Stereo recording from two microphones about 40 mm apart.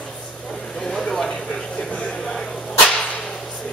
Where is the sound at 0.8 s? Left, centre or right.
Centre.